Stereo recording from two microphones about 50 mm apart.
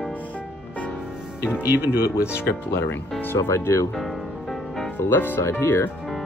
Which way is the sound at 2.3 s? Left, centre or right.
Left.